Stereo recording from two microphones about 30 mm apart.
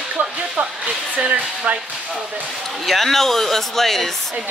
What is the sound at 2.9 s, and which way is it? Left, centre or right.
Speech, centre.